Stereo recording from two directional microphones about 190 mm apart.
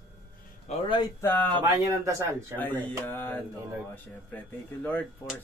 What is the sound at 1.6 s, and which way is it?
Speech, 15° right (ahead or behind).